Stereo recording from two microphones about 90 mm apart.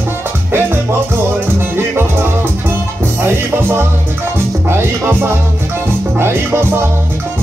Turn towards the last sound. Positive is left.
turn(degrees=-25)  # may be behind; listen again after turning